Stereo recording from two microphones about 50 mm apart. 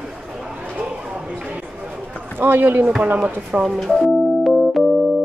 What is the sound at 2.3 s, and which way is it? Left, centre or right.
Speech, right.